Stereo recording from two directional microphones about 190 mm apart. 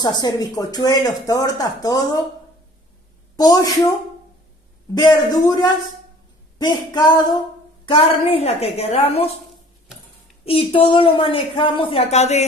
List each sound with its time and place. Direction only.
0.0 s speech: 20° left (ahead or behind)
3.3 s speech: 20° left (ahead or behind)
4.9 s a woman's voice: 20° left (ahead or behind)
10.4 s speech: 30° left (ahead or behind)